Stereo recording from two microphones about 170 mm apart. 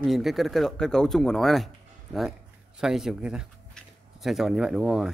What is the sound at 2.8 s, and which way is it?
Speech, centre (ahead or behind).